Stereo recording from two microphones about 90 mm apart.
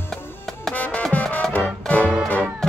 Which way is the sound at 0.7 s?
15° left (ahead or behind).